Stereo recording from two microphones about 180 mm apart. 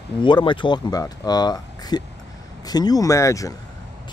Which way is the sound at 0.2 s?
25° left (ahead or behind).